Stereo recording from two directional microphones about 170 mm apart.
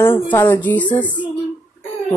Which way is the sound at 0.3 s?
15° left (ahead or behind).